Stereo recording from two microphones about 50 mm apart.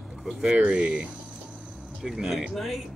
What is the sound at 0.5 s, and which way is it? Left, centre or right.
Speech, right.